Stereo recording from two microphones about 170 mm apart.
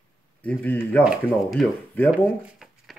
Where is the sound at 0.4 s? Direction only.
10° left (ahead or behind).